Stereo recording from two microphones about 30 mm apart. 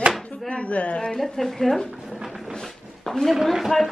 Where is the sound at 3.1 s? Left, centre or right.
Centre.